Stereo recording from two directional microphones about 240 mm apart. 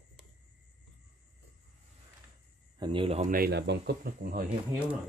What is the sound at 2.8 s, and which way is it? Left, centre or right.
Speech, right.